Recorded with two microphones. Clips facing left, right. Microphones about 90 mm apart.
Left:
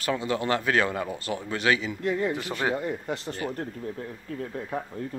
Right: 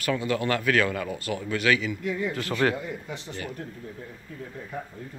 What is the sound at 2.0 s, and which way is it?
Speech, 55° left (ahead or behind).